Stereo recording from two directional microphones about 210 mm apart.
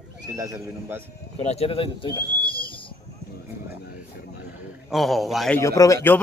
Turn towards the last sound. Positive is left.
turn(degrees=10)  # may be behind; listen again after turning